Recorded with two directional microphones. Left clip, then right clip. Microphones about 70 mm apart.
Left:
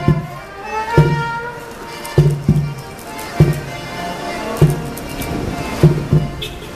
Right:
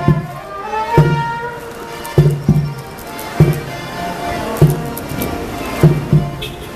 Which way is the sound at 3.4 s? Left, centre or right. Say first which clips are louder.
Right 2 dB; centre.